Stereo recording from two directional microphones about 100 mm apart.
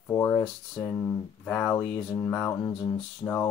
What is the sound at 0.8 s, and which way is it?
Speech, 25° left (ahead or behind).